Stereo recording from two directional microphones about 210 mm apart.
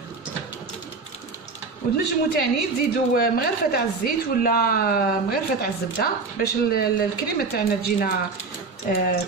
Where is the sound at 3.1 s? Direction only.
45° left (ahead or behind).